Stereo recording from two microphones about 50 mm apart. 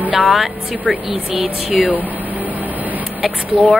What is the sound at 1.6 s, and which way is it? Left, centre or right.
Speech, centre.